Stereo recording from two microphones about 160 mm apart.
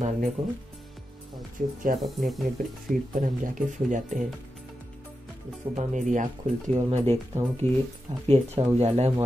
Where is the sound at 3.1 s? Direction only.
55° right (ahead or behind).